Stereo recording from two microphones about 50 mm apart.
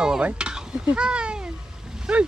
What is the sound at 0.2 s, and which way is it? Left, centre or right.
Dishes, centre.